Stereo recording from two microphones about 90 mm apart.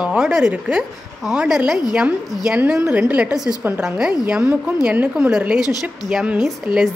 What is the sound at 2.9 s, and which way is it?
A woman's voice, 15° right (ahead or behind).